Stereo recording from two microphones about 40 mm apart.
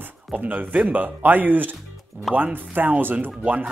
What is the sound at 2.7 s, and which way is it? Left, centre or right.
Speech, right.